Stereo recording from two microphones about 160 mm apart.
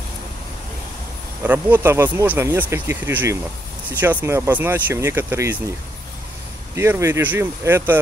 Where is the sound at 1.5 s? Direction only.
10° right (ahead or behind).